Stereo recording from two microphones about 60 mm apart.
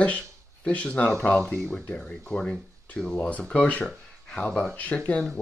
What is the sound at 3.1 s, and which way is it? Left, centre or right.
Speech, left.